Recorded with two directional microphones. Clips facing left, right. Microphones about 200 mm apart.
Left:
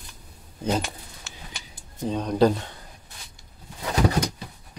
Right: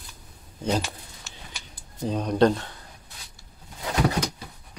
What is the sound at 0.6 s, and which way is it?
Speech, 10° left (ahead or behind).